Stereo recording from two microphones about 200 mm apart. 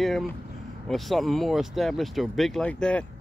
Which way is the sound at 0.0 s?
Centre (ahead or behind).